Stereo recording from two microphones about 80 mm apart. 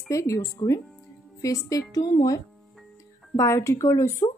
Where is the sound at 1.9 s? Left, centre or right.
Left.